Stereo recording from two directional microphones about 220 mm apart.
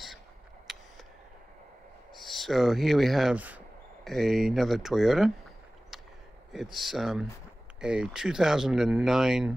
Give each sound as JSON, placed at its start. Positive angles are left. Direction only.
{"t": 0.7, "sound": "a sound", "side_deg": 0}
{"t": 2.1, "sound": "speech", "side_deg": 0}
{"t": 6.5, "sound": "speech", "side_deg": 0}